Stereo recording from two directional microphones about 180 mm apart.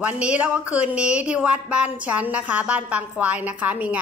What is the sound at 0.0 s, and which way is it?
Speech, 5° right (ahead or behind).